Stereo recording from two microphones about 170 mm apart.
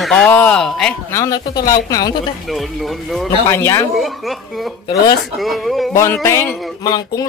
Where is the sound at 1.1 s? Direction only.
20° left (ahead or behind).